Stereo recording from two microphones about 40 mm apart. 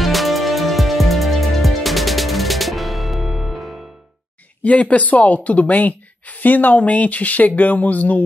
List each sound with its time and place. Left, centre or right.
0.0 s music: centre
4.6 s a woman's voice: left